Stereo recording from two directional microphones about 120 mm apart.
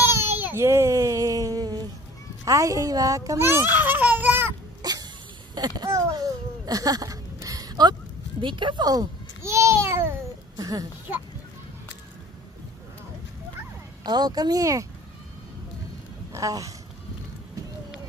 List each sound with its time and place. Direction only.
0.0 s baby cry: 20° right (ahead or behind)
0.4 s a sound: 20° right (ahead or behind)
2.4 s a child's voice: 30° right (ahead or behind)
4.8 s cough: 35° right (ahead or behind)
5.5 s a sound: 35° right (ahead or behind)
8.4 s babbling: 45° right (ahead or behind); by 10.1 s 20° right (ahead or behind)
10.6 s speech: 30° right (ahead or behind)
14.0 s speech: 35° right (ahead or behind)
16.3 s a sound: 30° right (ahead or behind)